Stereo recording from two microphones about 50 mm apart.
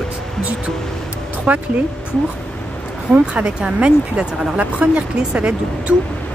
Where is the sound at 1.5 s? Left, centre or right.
Right.